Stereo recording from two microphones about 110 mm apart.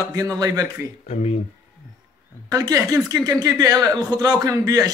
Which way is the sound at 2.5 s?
30° right (ahead or behind).